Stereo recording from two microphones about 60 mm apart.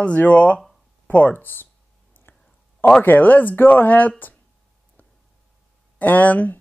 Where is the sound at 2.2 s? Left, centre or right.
Left.